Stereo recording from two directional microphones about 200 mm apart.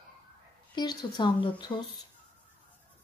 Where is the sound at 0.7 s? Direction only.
20° left (ahead or behind).